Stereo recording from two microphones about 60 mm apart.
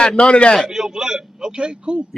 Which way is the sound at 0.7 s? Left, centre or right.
Centre.